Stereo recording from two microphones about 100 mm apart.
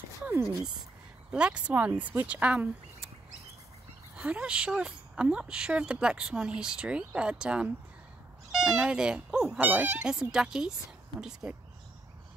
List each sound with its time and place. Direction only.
0.2 s a sound: 25° right (ahead or behind)
1.3 s speech: 10° right (ahead or behind)
4.2 s speech: 10° right (ahead or behind)